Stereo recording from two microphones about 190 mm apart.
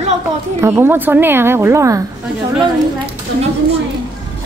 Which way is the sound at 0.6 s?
10° right (ahead or behind).